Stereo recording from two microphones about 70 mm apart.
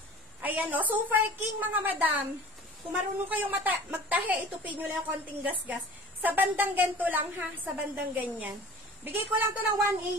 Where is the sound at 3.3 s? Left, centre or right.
Right.